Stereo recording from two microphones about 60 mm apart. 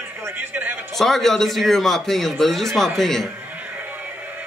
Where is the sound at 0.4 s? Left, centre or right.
Right.